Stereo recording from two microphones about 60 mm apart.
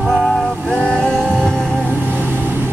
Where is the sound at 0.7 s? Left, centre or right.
Centre.